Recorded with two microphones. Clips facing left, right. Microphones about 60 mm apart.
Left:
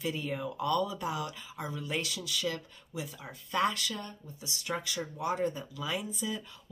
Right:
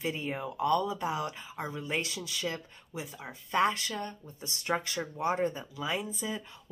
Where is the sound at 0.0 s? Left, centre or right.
Right.